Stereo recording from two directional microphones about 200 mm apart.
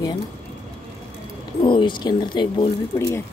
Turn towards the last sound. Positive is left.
turn(degrees=15)  # may be behind; listen again after turning